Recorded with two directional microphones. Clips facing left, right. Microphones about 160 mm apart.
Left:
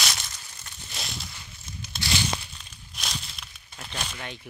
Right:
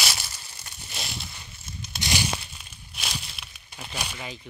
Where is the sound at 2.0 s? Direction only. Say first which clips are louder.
Even; 15° right (ahead or behind).